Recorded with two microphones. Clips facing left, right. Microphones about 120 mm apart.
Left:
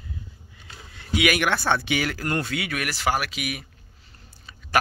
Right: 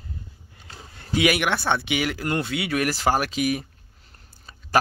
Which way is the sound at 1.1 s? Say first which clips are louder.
Right 2 dB; 30° right (ahead or behind).